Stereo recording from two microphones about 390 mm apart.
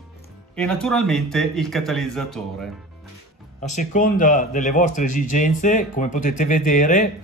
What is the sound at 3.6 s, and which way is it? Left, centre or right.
Speech, centre.